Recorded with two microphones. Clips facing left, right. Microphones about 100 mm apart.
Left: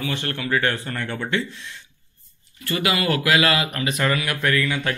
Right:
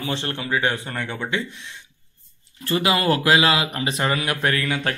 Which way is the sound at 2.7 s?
30° right (ahead or behind).